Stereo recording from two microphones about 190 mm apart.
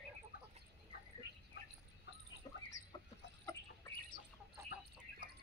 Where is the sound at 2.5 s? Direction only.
20° left (ahead or behind).